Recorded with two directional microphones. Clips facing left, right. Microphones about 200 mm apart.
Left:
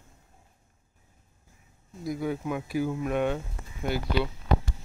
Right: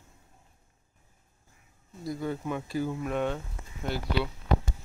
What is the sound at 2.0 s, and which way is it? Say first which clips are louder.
Speech: left 2 dB; 10° left (ahead or behind).